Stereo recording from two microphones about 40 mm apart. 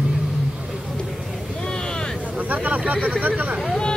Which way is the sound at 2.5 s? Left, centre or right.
Right.